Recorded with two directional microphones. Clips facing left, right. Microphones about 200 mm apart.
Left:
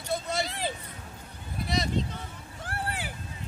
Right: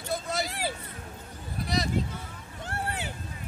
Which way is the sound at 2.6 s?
25° right (ahead or behind).